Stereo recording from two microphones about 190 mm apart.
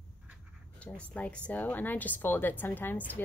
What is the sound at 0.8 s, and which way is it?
Speech, 5° left (ahead or behind).